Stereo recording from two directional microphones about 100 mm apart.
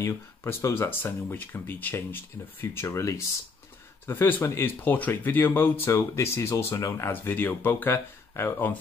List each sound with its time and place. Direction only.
0.0 s speech: 25° left (ahead or behind)